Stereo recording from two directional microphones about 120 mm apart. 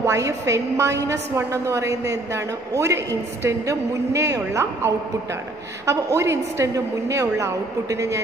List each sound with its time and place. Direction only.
0.0 s a woman's voice: 25° right (ahead or behind)